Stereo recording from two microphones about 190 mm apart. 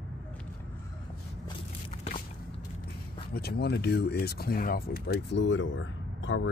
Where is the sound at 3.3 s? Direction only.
55° left (ahead or behind).